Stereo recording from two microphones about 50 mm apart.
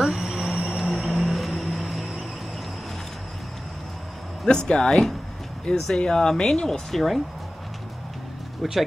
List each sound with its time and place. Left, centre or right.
0.0 s vehicle: centre
4.5 s speech: centre